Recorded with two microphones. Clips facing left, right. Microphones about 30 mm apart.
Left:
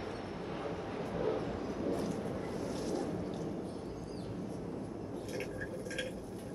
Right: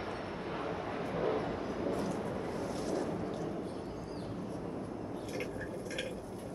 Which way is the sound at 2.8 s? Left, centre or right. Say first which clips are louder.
Right 2 dB; centre.